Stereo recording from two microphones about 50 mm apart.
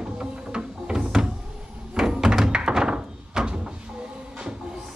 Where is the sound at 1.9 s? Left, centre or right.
Centre.